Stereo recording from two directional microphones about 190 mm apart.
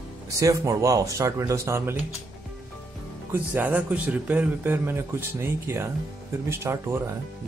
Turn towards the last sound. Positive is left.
turn(degrees=-15)  # may be behind; listen again after turning